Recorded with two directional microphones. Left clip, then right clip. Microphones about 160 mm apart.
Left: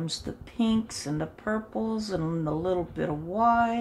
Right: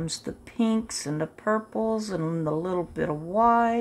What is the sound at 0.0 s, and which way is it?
Speech, 65° right (ahead or behind).